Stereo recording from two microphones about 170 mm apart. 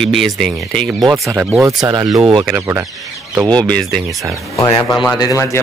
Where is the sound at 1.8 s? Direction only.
25° right (ahead or behind).